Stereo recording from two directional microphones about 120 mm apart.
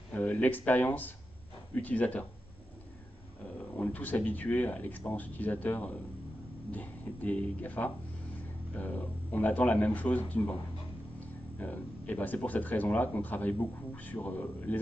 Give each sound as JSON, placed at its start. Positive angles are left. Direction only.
{"t": 0.1, "sound": "speech", "side_deg": 10}
{"t": 3.7, "sound": "speech", "side_deg": 15}